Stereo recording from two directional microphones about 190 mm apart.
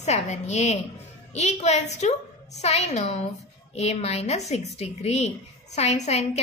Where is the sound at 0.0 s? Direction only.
35° left (ahead or behind).